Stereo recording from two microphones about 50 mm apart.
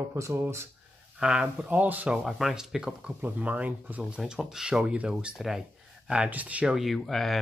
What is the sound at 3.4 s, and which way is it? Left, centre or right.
Speech, right.